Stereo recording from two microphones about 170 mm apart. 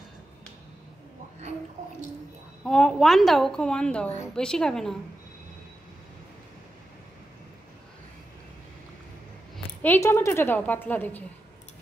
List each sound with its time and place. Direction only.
2.6 s a woman's voice: 5° left (ahead or behind)
10.0 s a woman's voice: 15° left (ahead or behind)